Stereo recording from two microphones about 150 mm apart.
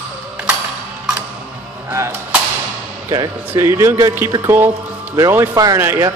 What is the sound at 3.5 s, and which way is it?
Speech, 20° right (ahead or behind).